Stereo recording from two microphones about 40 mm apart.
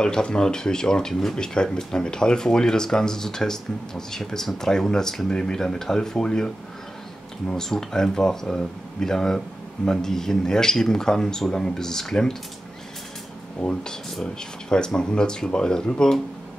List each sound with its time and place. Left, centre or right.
0.0 s speech: left
13.6 s speech: left